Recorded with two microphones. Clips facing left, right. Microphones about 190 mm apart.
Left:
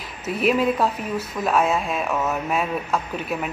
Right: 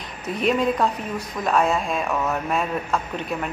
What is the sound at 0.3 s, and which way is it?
Speech, 5° left (ahead or behind).